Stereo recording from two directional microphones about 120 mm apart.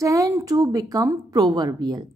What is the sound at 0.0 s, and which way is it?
A woman's voice, 25° right (ahead or behind).